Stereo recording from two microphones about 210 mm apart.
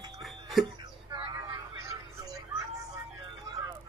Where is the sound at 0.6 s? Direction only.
20° right (ahead or behind).